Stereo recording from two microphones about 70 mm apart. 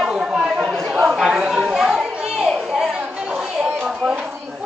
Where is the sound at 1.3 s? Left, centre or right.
Centre.